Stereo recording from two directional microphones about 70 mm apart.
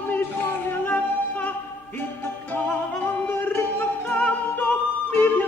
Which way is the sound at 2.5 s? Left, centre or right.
Left.